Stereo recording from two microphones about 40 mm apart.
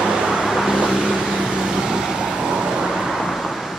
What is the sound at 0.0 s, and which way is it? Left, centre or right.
Vehicle, centre.